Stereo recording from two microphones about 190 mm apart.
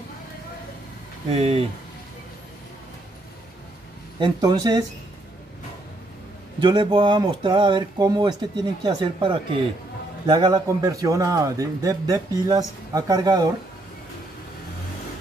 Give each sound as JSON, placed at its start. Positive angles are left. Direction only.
{"t": 1.3, "sound": "speech", "side_deg": -30}
{"t": 4.2, "sound": "a man's voice", "side_deg": -20}
{"t": 6.6, "sound": "a man's voice", "side_deg": -25}